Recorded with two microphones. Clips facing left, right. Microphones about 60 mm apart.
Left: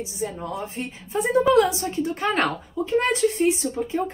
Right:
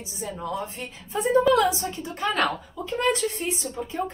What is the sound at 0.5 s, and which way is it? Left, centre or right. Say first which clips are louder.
A woman's voice: left 1 dB; left.